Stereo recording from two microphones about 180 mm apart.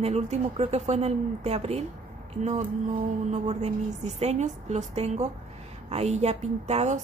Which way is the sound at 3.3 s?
40° right (ahead or behind).